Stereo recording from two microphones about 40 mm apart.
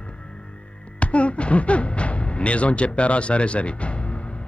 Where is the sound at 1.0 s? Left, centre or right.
Left.